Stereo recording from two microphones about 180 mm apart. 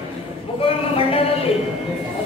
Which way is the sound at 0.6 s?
30° left (ahead or behind).